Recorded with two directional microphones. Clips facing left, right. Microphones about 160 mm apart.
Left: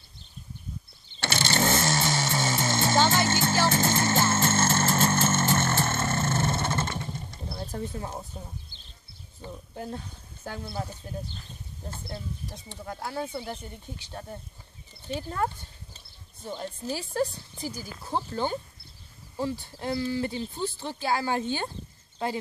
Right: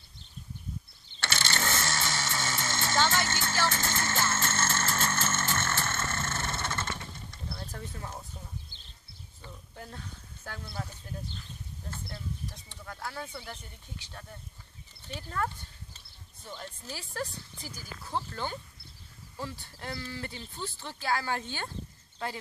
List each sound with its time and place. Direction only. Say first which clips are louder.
1.2 s vehicle: left 7 dB; 35° left (ahead or behind)
2.6 s music: left 5 dB; 35° left (ahead or behind)
4.4 s a sound: left 7 dB; 35° left (ahead or behind)
9.4 s speech: left 9 dB; 30° left (ahead or behind)